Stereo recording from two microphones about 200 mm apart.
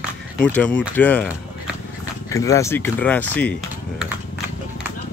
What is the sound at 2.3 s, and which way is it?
Speech, 15° left (ahead or behind).